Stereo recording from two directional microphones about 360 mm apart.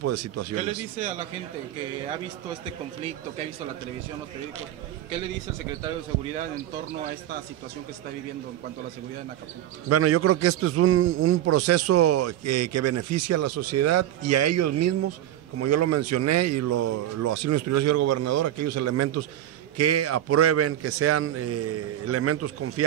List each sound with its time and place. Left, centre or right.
0.0 s a man's voice: right
9.8 s a man's voice: right